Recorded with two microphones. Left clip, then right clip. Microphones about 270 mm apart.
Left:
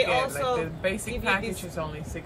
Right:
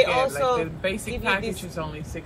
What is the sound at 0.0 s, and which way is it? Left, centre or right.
Speech, centre.